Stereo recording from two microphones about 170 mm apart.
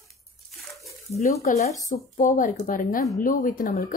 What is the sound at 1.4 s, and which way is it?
A woman's voice, 45° left (ahead or behind).